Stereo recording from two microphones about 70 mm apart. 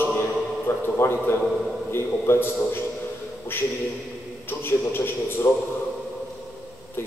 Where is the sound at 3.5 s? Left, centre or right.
Left.